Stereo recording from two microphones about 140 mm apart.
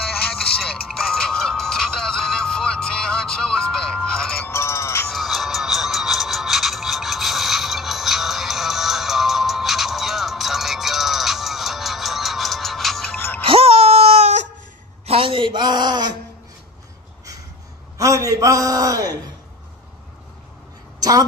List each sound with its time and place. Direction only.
0.6 s music: 5° left (ahead or behind)
4.5 s music: 20° left (ahead or behind)
5.1 s music: centre (ahead or behind)
13.4 s music: 40° right (ahead or behind)
15.0 s a sound: 40° right (ahead or behind)
17.9 s a man's voice: 25° right (ahead or behind)